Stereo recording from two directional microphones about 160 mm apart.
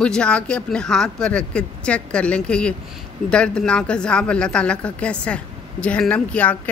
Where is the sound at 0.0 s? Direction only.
5° left (ahead or behind).